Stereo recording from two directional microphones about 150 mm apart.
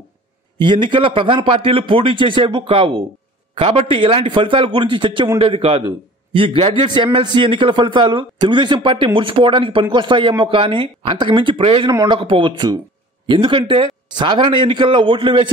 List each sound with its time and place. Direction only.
0.6 s a man's voice: 30° right (ahead or behind)